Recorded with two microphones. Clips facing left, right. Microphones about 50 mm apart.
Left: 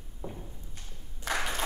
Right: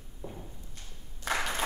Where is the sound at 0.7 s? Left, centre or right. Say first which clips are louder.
Left 1 dB; left.